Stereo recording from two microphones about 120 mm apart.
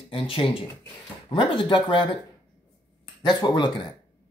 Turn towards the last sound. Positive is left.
turn(degrees=35)  # may be behind; listen again after turning